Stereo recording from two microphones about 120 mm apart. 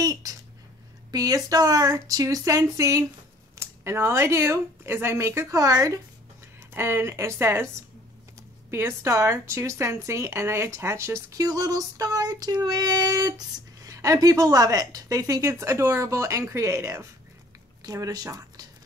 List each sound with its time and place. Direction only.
0.0 s a sound: 30° right (ahead or behind)
1.1 s speech: 30° right (ahead or behind)
8.6 s speech: 20° right (ahead or behind)